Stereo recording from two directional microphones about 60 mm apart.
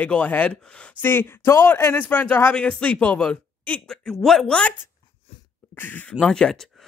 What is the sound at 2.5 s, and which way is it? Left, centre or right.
Speech, centre.